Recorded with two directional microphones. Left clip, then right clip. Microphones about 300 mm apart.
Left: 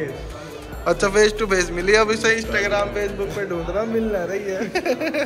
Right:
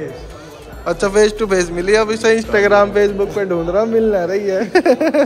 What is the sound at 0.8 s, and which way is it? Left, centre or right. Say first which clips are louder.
Speech: right 3 dB; centre.